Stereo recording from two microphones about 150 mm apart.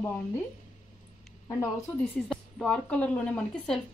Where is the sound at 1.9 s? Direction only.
5° left (ahead or behind).